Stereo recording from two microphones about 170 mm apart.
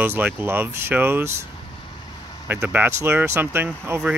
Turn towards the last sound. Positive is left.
turn(degrees=-15)  # may be behind; listen again after turning